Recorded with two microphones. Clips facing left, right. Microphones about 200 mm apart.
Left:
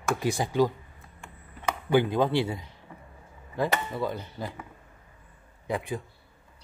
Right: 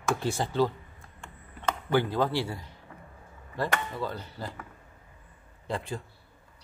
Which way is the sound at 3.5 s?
15° left (ahead or behind).